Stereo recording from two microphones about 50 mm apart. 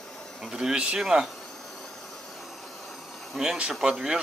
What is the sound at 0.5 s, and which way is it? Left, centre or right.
Speech, centre.